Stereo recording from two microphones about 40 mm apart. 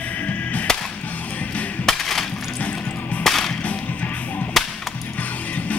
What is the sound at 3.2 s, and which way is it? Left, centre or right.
Whip, centre.